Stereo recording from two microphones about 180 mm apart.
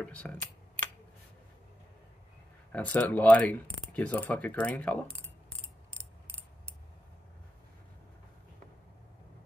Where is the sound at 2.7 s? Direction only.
10° left (ahead or behind).